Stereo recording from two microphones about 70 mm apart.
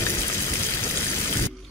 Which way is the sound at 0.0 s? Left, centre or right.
Left.